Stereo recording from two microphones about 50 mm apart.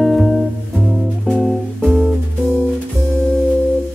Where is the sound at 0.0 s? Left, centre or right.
Centre.